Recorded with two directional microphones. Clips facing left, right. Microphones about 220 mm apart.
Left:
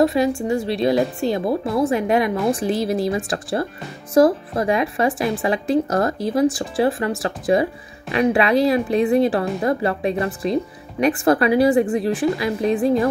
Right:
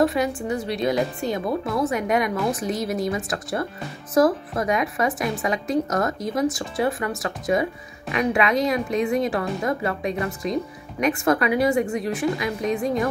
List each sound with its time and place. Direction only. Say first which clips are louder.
0.0 s speech: left 4 dB; 25° left (ahead or behind)